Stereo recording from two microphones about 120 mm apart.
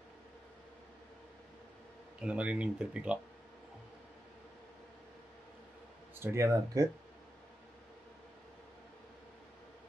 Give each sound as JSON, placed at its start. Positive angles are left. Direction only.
{"t": 2.1, "sound": "speech", "side_deg": -10}
{"t": 6.1, "sound": "speech", "side_deg": -20}